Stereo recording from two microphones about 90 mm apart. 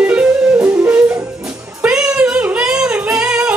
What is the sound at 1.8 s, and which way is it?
Singing, 10° right (ahead or behind).